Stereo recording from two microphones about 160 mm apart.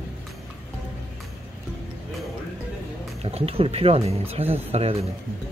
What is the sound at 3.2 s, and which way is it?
Speech, 40° right (ahead or behind).